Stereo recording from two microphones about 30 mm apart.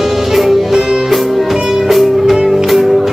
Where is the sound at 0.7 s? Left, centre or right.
Centre.